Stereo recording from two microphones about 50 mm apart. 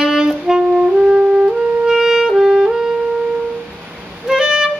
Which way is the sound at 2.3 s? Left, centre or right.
Centre.